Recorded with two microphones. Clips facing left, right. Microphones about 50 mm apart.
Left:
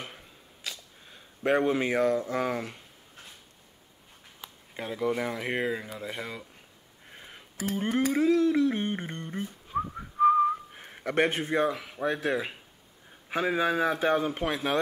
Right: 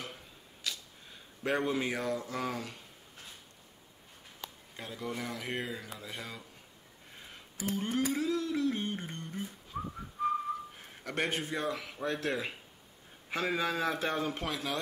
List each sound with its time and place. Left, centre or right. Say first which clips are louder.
1.4 s a man's voice: left 6 dB; left
4.4 s a sound: right 1 dB; centre
4.7 s a man's voice: left 10 dB; left
7.2 s a sound: left 3 dB; left
7.5 s speech: left 4 dB; left
8.1 s a sound: left 9 dB; left
11.1 s speech: left 8 dB; left
11.7 s a man's voice: left 5 dB; centre
14.5 s speech: left 7 dB; left